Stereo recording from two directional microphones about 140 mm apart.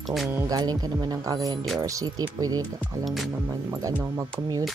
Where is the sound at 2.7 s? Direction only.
Centre (ahead or behind).